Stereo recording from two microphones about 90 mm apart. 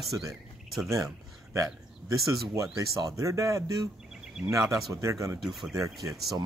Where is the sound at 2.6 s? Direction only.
40° right (ahead or behind).